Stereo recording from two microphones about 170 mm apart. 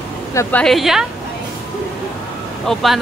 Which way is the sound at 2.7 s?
Centre (ahead or behind).